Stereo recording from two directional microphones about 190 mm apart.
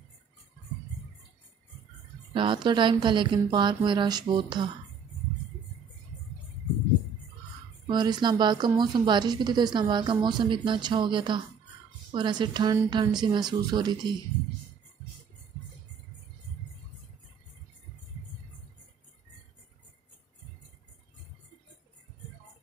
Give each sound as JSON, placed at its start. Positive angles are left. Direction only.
{"t": 2.3, "sound": "speech", "side_deg": -25}
{"t": 7.8, "sound": "speech", "side_deg": -20}